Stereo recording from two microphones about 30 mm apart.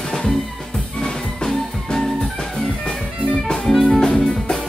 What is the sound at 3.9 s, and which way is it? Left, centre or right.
Music, left.